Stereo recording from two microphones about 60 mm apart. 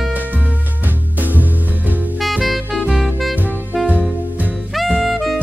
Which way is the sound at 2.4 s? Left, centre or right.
Centre.